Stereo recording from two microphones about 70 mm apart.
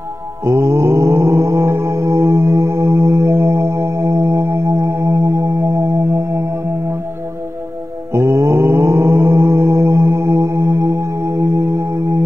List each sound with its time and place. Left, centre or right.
0.4 s mantra: right
5.8 s music: right
8.1 s mantra: right
10.7 s singing bowl: right